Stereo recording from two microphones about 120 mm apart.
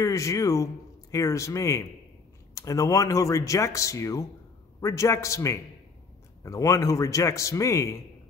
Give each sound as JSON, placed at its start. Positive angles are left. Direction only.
{"t": 0.0, "sound": "speech", "side_deg": 25}